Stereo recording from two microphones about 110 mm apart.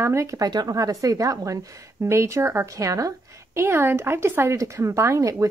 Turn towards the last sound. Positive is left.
turn(degrees=-30)  # may be behind; listen again after turning